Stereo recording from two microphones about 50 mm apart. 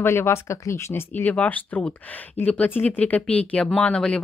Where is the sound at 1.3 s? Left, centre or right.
Left.